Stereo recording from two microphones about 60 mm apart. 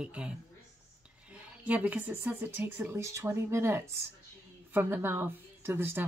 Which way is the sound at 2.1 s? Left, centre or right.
Right.